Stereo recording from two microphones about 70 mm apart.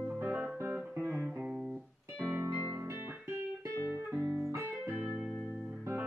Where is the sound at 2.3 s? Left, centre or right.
Right.